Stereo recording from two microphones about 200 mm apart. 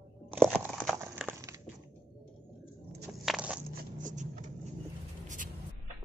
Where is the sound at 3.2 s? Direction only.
5° right (ahead or behind).